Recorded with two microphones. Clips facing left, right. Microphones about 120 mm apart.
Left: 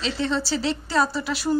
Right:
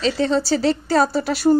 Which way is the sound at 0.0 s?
40° right (ahead or behind).